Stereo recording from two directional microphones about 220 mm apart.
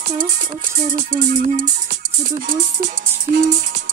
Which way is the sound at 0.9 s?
35° right (ahead or behind).